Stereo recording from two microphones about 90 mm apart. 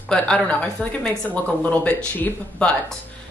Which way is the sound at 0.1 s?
10° left (ahead or behind).